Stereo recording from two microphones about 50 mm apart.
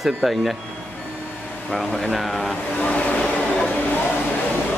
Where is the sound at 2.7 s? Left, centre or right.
Left.